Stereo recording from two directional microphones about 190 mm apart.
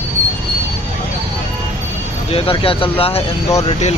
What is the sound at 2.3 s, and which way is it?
Speech, 30° left (ahead or behind).